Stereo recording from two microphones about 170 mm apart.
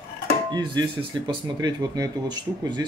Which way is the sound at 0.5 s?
25° right (ahead or behind).